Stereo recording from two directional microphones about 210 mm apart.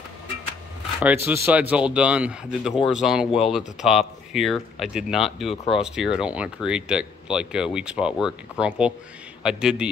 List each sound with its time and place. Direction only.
1.0 s speech: 10° right (ahead or behind)